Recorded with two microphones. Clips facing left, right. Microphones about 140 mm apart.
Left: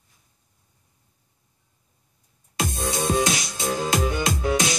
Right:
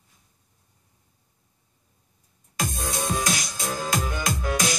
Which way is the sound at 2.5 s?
25° left (ahead or behind).